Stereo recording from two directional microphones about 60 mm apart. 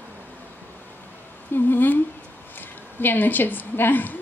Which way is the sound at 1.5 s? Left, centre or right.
Left.